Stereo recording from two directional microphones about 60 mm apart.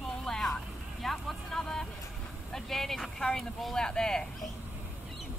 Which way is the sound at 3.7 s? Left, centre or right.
Centre.